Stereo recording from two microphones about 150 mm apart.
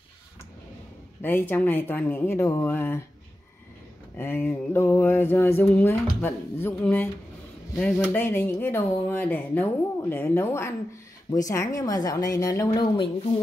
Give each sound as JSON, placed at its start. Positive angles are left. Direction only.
{"t": 1.2, "sound": "mantra", "side_deg": 15}
{"t": 4.2, "sound": "mantra", "side_deg": 15}
{"t": 8.1, "sound": "mantra", "side_deg": 15}
{"t": 11.3, "sound": "a woman's voice", "side_deg": 20}